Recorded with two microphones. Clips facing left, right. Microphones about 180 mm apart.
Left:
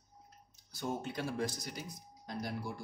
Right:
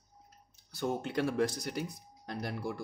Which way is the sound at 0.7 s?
65° right (ahead or behind).